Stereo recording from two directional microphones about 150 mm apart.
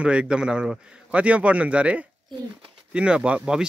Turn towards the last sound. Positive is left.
turn(degrees=-5)  # may be behind; listen again after turning